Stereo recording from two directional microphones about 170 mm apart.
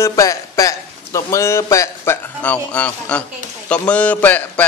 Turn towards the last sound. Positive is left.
turn(degrees=10)  # may be behind; listen again after turning